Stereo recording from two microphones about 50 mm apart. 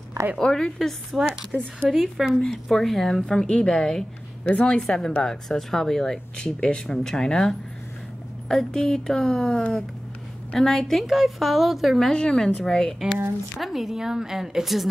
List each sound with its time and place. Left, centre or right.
0.4 s speech: centre
1.1 s a woman's voice: centre
1.9 s a woman's voice: centre
2.4 s a woman's voice: centre
4.5 s speech: left
4.8 s a woman's voice: centre
12.1 s speech: centre
13.6 s a woman's voice: centre